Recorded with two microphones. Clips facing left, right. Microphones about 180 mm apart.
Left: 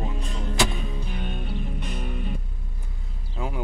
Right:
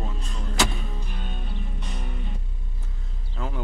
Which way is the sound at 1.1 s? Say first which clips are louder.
Left 5 dB; 60° left (ahead or behind).